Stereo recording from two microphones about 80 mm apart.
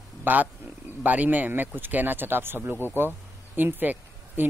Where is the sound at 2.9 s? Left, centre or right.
Right.